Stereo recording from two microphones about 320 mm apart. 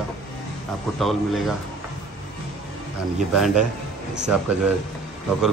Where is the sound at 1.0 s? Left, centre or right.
Centre.